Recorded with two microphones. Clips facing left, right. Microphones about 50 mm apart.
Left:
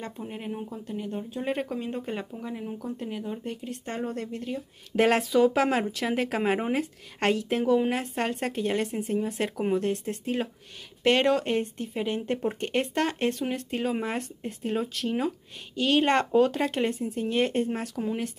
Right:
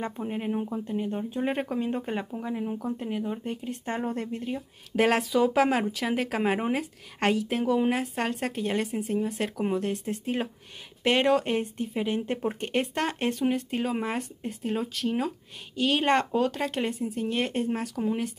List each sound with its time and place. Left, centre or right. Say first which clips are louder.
0.0 s speech: right 5 dB; centre
4.9 s speech: left 1 dB; centre